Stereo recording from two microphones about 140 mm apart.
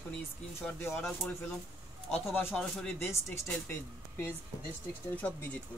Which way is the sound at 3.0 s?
20° left (ahead or behind).